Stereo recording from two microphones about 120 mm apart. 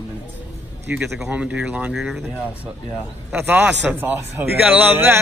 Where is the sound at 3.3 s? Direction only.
15° right (ahead or behind).